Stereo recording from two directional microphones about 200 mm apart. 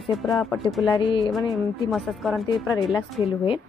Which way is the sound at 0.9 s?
25° left (ahead or behind).